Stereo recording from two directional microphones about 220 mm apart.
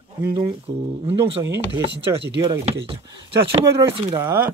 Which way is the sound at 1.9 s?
50° right (ahead or behind).